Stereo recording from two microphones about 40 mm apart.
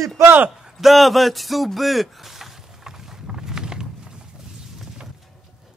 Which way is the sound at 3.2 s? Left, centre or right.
Centre.